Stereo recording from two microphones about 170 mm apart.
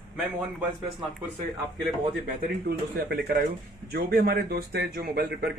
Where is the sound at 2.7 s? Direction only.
65° right (ahead or behind).